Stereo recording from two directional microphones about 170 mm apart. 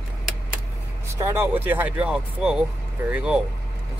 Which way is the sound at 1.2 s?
15° right (ahead or behind).